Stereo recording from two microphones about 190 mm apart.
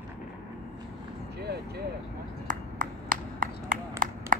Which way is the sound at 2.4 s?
45° right (ahead or behind).